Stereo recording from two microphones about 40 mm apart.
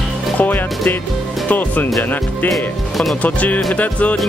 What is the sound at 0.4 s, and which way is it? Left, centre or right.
Speech, left.